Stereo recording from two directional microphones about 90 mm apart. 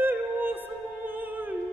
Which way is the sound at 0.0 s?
20° right (ahead or behind).